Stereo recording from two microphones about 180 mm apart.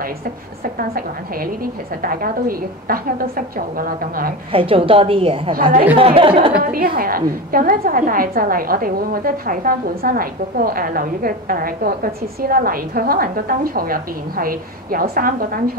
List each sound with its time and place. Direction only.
0.7 s a woman's voice: 55° right (ahead or behind)
4.5 s a woman's voice: 30° right (ahead or behind)
6.6 s a woman's voice: 55° right (ahead or behind)